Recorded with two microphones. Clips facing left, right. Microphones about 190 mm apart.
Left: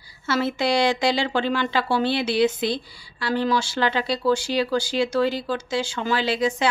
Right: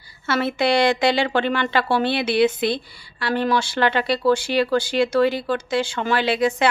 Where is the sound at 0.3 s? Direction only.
60° right (ahead or behind).